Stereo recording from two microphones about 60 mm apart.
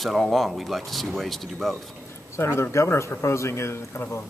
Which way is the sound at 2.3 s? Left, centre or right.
Left.